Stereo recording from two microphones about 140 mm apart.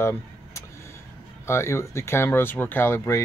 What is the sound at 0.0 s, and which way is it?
Vehicle, 20° left (ahead or behind).